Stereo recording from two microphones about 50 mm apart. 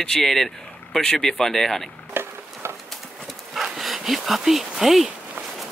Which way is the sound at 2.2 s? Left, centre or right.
Right.